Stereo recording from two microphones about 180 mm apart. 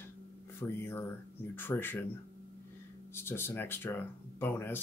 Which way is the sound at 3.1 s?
15° left (ahead or behind).